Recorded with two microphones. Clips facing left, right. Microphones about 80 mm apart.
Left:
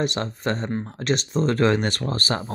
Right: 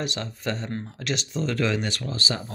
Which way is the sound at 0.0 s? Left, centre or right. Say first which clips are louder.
Left 5 dB; left.